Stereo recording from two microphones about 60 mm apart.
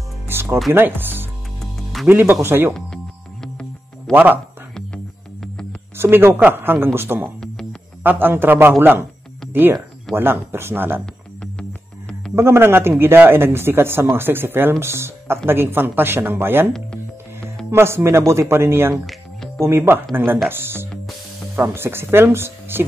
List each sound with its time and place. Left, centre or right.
0.3 s music: right
0.7 s speech: right
1.6 s music: centre
2.0 s speech: right
4.1 s speech: right
4.7 s music: centre
5.9 s speech: right
12.4 s speech: right
17.6 s speech: right
19.0 s music: centre
19.6 s speech: right